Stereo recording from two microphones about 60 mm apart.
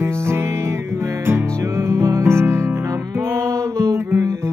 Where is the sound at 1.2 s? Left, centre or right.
Right.